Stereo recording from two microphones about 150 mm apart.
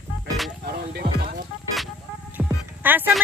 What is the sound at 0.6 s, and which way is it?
Music, 90° right.